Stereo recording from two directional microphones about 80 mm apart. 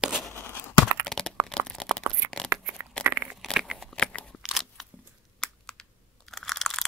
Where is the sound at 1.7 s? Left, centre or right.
Centre.